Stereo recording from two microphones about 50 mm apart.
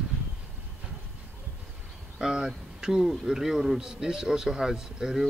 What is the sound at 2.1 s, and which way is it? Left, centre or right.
A man's voice, centre.